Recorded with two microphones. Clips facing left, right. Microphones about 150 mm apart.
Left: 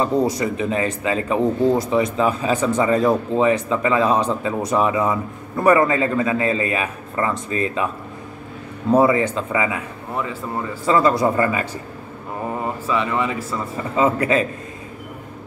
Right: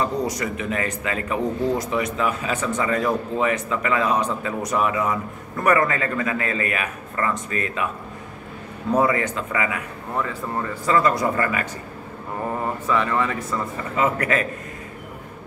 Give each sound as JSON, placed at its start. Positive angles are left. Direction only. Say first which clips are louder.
{"t": 0.0, "sound": "speech", "louder": "left 5 dB", "side_deg": 30}
{"t": 8.9, "sound": "speech", "louder": "left 5 dB", "side_deg": 25}
{"t": 10.1, "sound": "a man's voice", "louder": "even", "side_deg": 15}
{"t": 11.0, "sound": "speech", "louder": "left 4 dB", "side_deg": 25}
{"t": 12.9, "sound": "a man's voice", "louder": "left 1 dB", "side_deg": 15}
{"t": 13.4, "sound": "speech", "louder": "left 1 dB", "side_deg": 30}